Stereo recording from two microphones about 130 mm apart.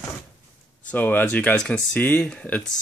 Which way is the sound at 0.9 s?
15° left (ahead or behind).